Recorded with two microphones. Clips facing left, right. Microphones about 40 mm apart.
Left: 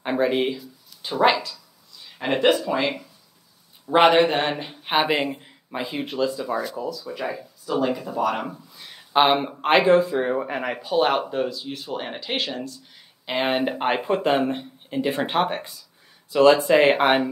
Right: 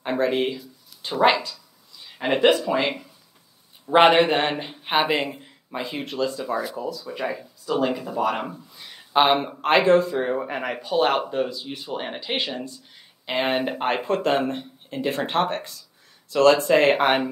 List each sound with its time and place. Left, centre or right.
0.0 s a sound: centre
0.4 s speech: centre
1.3 s speech: centre
4.1 s speech: right
4.5 s speech: centre
4.8 s speech: centre
6.4 s speech: centre
8.2 s speech: centre
8.5 s speech: centre
13.2 s speech: centre
16.9 s speech: centre